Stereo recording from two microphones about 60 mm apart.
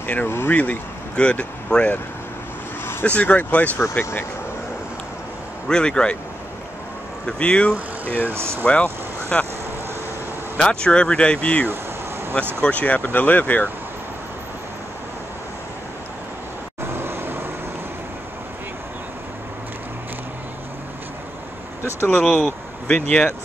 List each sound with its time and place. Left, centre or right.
0.0 s speech: left
0.3 s speech: left
0.6 s speech: left
3.2 s speech: left
4.0 s speech: left
5.7 s speech: centre
7.2 s speech: centre
8.2 s speech: right
8.6 s speech: left
10.6 s speech: centre
16.8 s vehicle: right
21.8 s speech: left
22.2 s speech: centre
22.8 s speech: left